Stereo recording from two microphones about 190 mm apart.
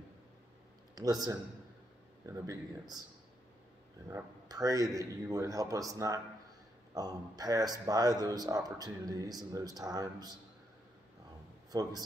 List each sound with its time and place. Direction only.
0.9 s speech: 20° right (ahead or behind)
4.1 s speech: 20° right (ahead or behind)
11.7 s speech: 20° right (ahead or behind)